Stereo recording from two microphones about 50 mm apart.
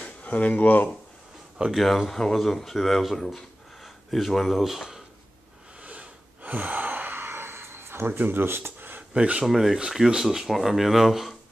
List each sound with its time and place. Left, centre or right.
0.0 s speech: left
1.6 s speech: right
2.0 s speech: centre
5.9 s gasp: right
8.1 s speech: right
9.1 s speech: right
9.4 s speech: centre